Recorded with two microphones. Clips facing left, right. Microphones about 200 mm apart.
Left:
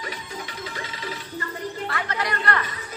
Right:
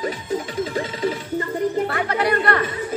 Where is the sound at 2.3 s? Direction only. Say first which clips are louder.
Right 6 dB; 45° right (ahead or behind).